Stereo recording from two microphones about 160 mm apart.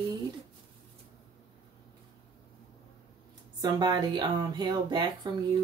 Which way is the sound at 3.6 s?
25° right (ahead or behind).